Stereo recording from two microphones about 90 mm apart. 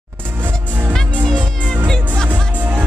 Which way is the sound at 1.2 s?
10° left (ahead or behind).